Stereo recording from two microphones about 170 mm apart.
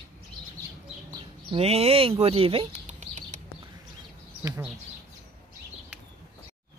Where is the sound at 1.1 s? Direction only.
35° right (ahead or behind).